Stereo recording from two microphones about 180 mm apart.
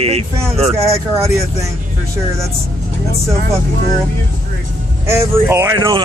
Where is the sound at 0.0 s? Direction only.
35° right (ahead or behind).